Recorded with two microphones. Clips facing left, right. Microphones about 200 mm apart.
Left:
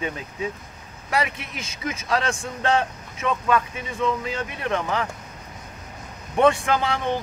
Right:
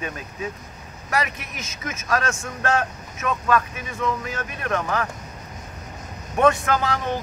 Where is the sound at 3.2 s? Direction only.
15° left (ahead or behind).